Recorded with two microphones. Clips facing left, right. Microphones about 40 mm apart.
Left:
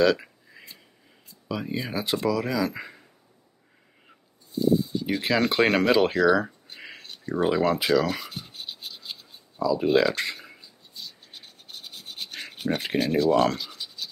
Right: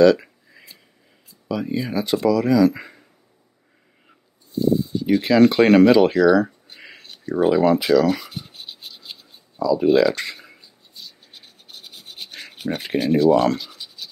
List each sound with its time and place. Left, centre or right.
0.0 s a sound: centre
1.5 s speech: centre
4.5 s speech: centre
7.2 s scratch: centre
9.6 s writing: centre